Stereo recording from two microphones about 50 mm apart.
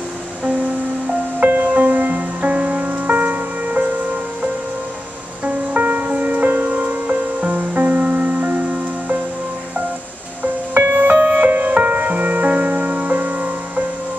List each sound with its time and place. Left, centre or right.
1.4 s music: right
5.4 s music: right
11.0 s music: right